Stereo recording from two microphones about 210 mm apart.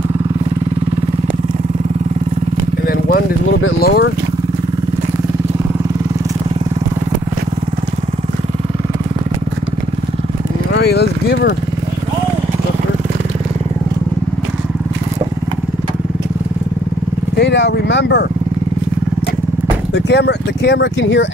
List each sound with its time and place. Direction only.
3.8 s speech: 50° left (ahead or behind)
10.7 s speech: 50° left (ahead or behind)
17.4 s speech: 55° left (ahead or behind)
19.9 s speech: 55° left (ahead or behind)